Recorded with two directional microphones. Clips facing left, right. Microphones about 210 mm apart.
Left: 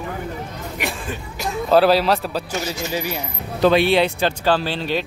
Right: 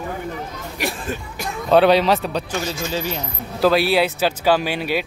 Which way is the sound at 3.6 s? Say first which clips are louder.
Left 1 dB; centre (ahead or behind).